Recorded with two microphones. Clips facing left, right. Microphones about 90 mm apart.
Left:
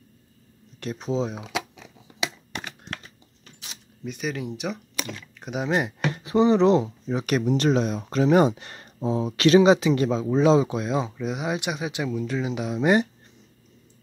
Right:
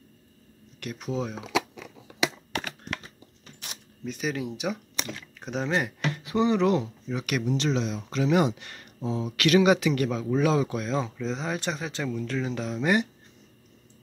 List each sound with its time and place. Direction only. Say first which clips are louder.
0.7 s speech: left 4 dB; 30° left (ahead or behind)
4.0 s speech: even; centre (ahead or behind); by 12.9 s 20° left (ahead or behind)